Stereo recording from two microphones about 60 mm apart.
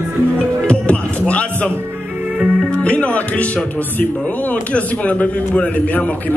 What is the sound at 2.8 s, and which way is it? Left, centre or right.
Music, left.